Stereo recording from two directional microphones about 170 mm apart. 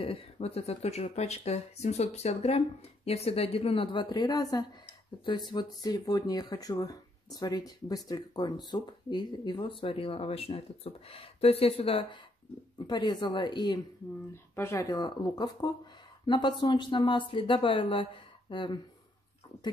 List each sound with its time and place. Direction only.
0.0 s speech: 35° left (ahead or behind)
14.3 s speech: 15° left (ahead or behind)